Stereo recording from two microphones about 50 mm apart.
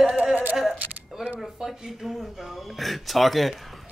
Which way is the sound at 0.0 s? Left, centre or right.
Right.